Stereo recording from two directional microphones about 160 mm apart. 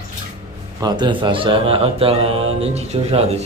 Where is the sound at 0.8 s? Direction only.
25° right (ahead or behind).